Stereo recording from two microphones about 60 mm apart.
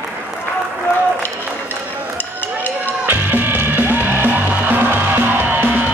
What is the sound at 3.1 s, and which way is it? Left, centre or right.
Music, right.